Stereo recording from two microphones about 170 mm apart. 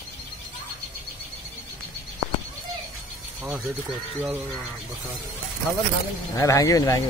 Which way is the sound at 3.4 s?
10° right (ahead or behind).